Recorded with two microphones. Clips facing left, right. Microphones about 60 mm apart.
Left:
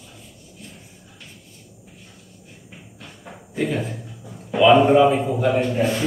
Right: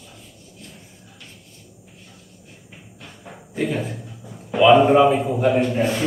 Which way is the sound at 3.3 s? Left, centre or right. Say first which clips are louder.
Even; centre.